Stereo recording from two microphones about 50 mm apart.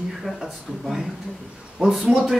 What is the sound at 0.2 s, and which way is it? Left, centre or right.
A man's voice, centre.